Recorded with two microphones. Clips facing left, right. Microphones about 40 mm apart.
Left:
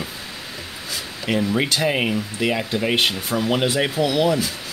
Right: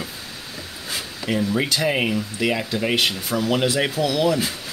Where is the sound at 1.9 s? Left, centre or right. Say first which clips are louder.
Even; centre.